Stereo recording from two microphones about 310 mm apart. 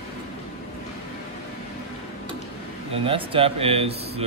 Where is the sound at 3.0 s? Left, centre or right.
Centre.